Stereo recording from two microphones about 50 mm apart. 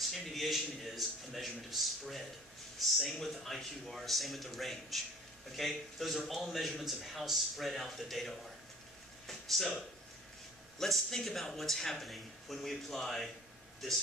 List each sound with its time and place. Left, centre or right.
0.1 s speech: centre
9.3 s a sound: centre
10.8 s speech: centre